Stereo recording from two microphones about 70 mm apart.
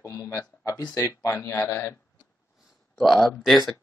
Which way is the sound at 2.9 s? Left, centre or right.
Centre.